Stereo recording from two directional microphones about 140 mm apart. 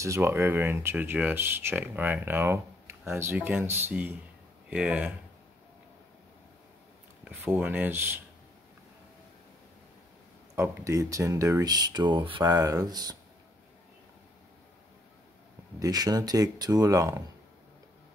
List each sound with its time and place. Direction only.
0.0 s speech: 20° right (ahead or behind)
7.2 s speech: 15° right (ahead or behind)
10.5 s speech: 20° right (ahead or behind)
15.8 s speech: 25° right (ahead or behind)